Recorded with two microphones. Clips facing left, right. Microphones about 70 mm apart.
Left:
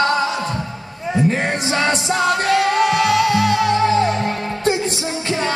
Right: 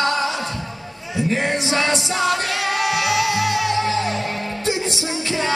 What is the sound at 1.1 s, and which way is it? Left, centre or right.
Music, left.